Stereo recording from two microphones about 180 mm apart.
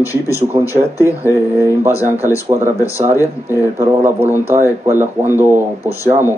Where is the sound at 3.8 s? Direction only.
15° right (ahead or behind).